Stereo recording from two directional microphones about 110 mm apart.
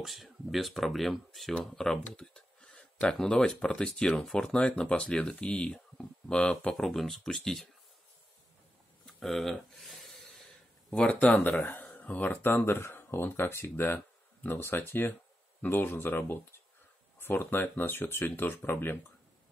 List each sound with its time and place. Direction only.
0.0 s speech: centre (ahead or behind)
9.0 s a sound: centre (ahead or behind)
10.9 s speech: 10° left (ahead or behind)